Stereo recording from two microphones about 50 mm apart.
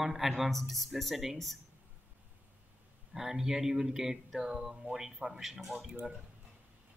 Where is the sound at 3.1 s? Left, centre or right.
Centre.